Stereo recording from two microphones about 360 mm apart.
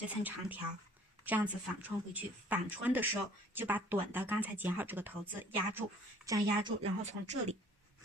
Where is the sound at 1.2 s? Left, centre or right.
Centre.